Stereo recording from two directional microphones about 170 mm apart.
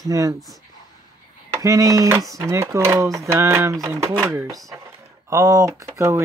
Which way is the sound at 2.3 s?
15° right (ahead or behind).